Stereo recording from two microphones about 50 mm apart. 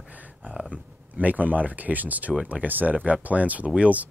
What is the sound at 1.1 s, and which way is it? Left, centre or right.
Speech, right.